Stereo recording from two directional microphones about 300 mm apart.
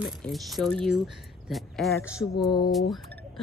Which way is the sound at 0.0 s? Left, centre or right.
Centre.